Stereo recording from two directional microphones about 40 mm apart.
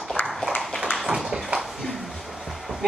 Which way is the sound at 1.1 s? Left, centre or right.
Centre.